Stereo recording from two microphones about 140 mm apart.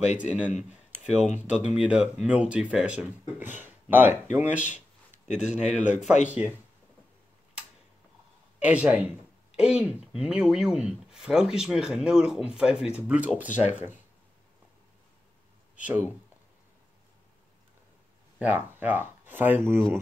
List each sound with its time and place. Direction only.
0.2 s speech: 10° right (ahead or behind)
1.0 s speech: 55° left (ahead or behind)
1.7 s speech: 10° right (ahead or behind)
5.3 s speech: 55° left (ahead or behind)
5.9 s speech: 5° right (ahead or behind)
8.5 s speech: 10° right (ahead or behind)
18.4 s speech: 10° right (ahead or behind)